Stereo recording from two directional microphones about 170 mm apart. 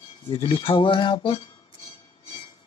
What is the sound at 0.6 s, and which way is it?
Speech, 30° left (ahead or behind).